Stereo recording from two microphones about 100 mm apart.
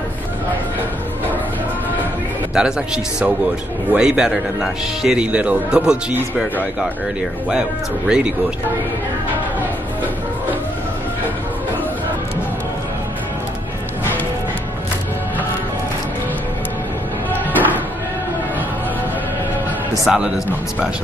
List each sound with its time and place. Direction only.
2.5 s a man's voice: 5° right (ahead or behind)
17.3 s music: 20° left (ahead or behind)
20.1 s a man's voice: 5° right (ahead or behind)